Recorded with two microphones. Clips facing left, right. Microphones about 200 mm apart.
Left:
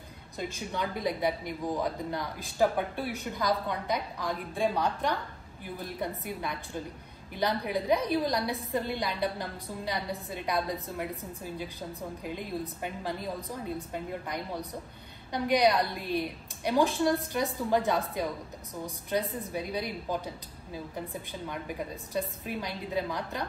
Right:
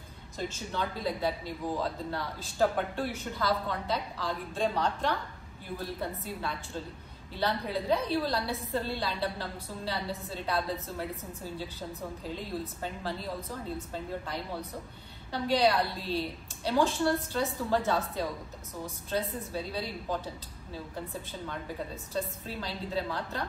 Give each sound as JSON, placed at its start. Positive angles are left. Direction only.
{"t": 0.4, "sound": "speech", "side_deg": 15}